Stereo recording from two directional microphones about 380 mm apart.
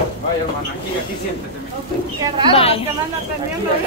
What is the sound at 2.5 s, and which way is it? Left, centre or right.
Speech, centre.